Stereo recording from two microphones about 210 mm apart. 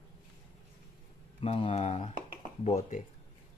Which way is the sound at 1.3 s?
25° left (ahead or behind).